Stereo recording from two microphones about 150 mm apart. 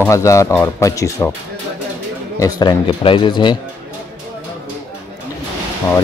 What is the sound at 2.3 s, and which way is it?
Speech, 25° left (ahead or behind).